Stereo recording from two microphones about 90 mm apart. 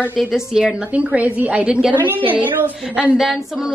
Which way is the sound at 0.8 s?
15° right (ahead or behind).